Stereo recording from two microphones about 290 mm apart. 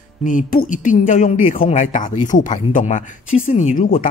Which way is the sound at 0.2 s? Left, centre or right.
Left.